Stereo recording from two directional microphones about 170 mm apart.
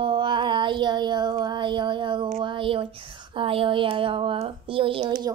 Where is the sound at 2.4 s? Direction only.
30° right (ahead or behind).